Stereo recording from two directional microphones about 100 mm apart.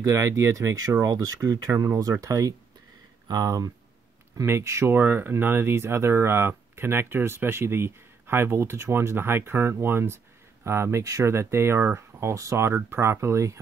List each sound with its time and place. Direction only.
0.0 s speech: 30° right (ahead or behind)